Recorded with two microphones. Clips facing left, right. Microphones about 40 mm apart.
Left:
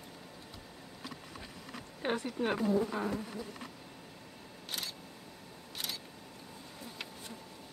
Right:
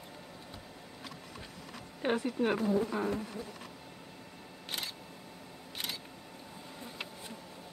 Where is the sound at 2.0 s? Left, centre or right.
Centre.